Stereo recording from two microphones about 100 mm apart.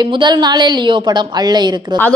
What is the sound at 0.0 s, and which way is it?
A woman's voice, 50° right (ahead or behind).